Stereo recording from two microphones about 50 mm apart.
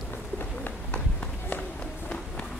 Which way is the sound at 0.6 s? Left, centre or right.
Left.